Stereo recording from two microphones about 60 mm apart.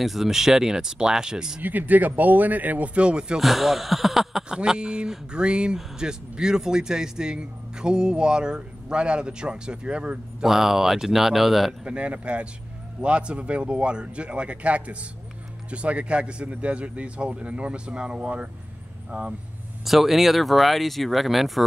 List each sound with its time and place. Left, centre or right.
0.0 s speech: centre
1.6 s speech: right
3.3 s speech: centre
4.6 s speech: centre
10.5 s speech: centre
11.8 s speech: centre
19.8 s speech: centre